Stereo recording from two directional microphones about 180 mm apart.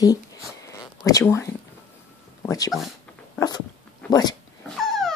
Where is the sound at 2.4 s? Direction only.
20° left (ahead or behind).